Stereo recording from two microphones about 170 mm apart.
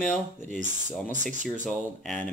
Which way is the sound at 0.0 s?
5° left (ahead or behind).